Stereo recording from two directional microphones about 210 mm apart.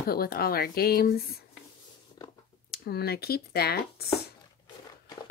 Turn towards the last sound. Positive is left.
turn(degrees=50)  # may be behind; listen again after turning